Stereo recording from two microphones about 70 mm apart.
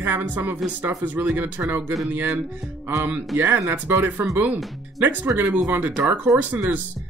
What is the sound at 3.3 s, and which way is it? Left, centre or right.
Speech, right.